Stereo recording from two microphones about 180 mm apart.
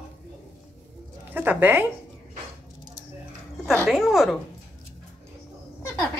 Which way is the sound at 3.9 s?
Centre (ahead or behind).